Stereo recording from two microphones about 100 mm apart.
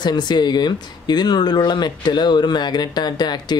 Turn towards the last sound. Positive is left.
turn(degrees=45)  # may be behind; listen again after turning